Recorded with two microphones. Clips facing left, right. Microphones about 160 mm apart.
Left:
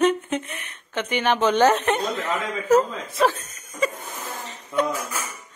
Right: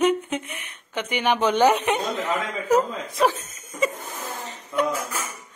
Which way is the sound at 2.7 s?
15° right (ahead or behind).